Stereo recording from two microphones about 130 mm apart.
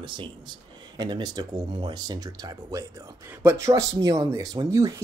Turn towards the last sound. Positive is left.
turn(degrees=-30)  # may be behind; listen again after turning